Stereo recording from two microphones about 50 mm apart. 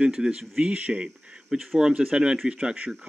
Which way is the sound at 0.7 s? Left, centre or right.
Right.